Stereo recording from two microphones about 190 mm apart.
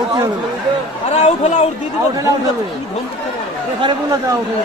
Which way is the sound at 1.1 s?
35° left (ahead or behind).